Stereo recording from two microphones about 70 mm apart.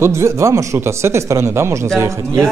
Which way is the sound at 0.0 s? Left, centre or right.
Right.